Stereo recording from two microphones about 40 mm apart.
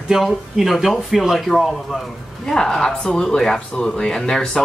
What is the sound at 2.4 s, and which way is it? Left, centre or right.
Speech, centre.